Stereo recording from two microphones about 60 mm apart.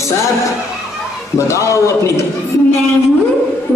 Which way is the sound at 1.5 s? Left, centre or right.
Left.